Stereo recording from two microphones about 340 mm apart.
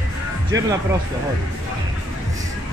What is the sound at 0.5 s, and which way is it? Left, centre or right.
Speech, right.